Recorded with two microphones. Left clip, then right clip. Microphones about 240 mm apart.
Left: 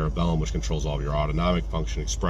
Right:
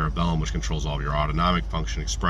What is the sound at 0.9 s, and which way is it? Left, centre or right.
Speech, right.